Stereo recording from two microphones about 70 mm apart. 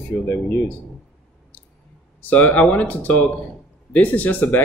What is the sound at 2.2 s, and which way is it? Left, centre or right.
Speech, left.